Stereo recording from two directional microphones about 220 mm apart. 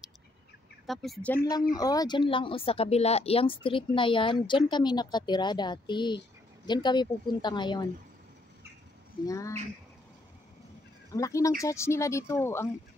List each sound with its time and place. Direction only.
0.8 s speech: centre (ahead or behind); by 7.8 s 20° left (ahead or behind)
9.2 s speech: 15° left (ahead or behind)
11.1 s speech: 15° left (ahead or behind)